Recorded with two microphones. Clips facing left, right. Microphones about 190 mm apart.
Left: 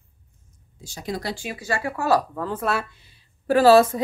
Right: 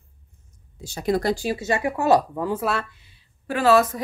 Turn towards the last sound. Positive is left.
turn(degrees=30)  # may be behind; listen again after turning